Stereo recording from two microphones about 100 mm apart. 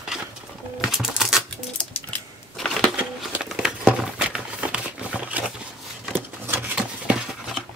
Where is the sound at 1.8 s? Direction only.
10° left (ahead or behind).